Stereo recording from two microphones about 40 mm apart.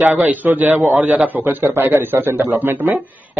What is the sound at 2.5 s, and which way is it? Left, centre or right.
Speech, right.